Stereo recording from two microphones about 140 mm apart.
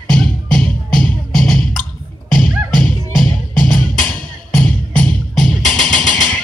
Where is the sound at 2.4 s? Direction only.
70° left (ahead or behind).